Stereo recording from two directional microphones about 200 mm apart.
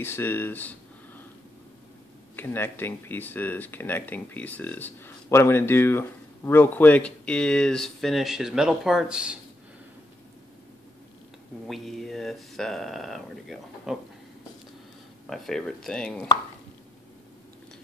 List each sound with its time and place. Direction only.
0.0 s speech: 10° left (ahead or behind)
2.3 s speech: 10° left (ahead or behind)
11.6 s speech: centre (ahead or behind)
15.2 s speech: centre (ahead or behind)